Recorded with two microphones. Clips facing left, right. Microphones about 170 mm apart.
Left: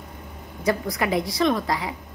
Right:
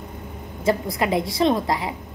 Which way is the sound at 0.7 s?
25° right (ahead or behind).